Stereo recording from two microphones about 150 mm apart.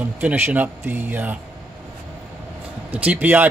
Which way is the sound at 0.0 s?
10° right (ahead or behind).